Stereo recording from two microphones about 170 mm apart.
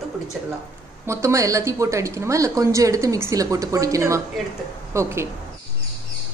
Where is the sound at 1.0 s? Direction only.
15° right (ahead or behind).